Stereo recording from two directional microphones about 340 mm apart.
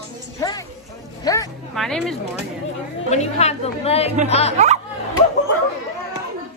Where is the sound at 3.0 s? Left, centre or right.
Centre.